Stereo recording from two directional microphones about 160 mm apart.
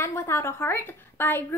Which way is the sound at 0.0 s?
15° left (ahead or behind).